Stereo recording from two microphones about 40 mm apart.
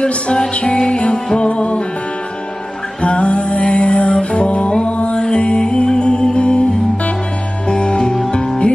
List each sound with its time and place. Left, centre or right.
0.0 s music: left
3.0 s music: left
7.6 s music: left